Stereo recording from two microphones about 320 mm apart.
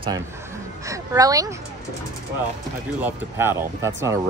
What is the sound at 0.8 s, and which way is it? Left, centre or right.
Speech, centre.